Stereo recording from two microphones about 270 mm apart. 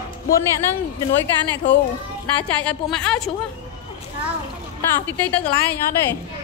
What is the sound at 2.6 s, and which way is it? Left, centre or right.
Speech, centre.